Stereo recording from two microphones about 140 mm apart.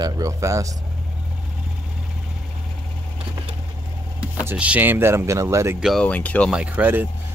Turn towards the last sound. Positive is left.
turn(degrees=-10)  # may be behind; listen again after turning